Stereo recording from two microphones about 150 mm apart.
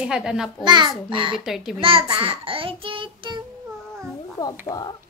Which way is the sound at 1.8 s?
35° right (ahead or behind).